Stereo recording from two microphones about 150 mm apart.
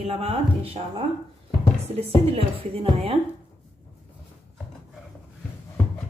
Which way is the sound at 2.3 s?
40° right (ahead or behind).